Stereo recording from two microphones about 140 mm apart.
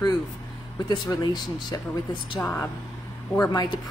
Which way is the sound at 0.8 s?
30° left (ahead or behind).